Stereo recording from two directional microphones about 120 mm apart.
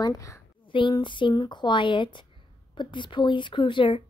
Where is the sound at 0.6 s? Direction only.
45° left (ahead or behind).